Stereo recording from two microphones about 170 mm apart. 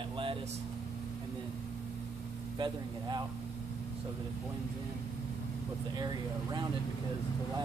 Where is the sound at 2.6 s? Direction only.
25° right (ahead or behind).